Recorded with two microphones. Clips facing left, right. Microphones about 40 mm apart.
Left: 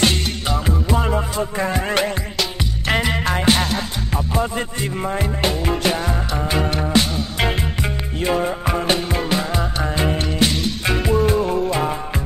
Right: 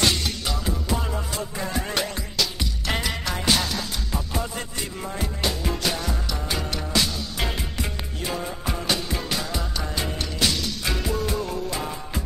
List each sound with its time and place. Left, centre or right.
0.0 s music: left